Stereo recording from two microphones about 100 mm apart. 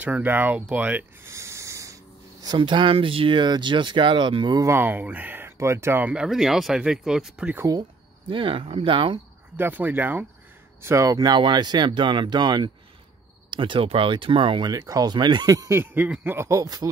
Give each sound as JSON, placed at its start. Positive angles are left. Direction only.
{"t": 0.0, "sound": "speech", "side_deg": -15}
{"t": 2.4, "sound": "speech", "side_deg": -50}
{"t": 4.6, "sound": "speech", "side_deg": -25}
{"t": 6.2, "sound": "speech", "side_deg": -5}
{"t": 7.7, "sound": "speech", "side_deg": -35}
{"t": 8.3, "sound": "speech", "side_deg": -60}
{"t": 9.6, "sound": "speech", "side_deg": -20}
{"t": 10.8, "sound": "speech", "side_deg": -30}
{"t": 13.5, "sound": "speech", "side_deg": -55}
{"t": 14.7, "sound": "speech", "side_deg": -40}
{"t": 15.5, "sound": "speech", "side_deg": -35}
{"t": 15.8, "sound": "speech", "side_deg": -20}
{"t": 16.4, "sound": "speech", "side_deg": -35}